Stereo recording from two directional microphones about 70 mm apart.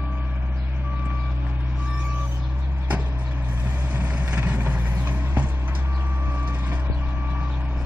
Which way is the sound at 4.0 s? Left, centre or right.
Right.